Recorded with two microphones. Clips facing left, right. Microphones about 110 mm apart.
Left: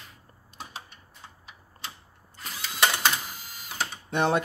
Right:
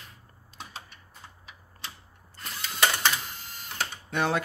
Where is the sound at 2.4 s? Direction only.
Centre (ahead or behind).